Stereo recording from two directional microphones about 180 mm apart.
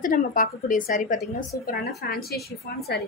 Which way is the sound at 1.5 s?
55° left (ahead or behind).